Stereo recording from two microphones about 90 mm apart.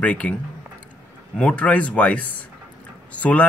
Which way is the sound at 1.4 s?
15° left (ahead or behind).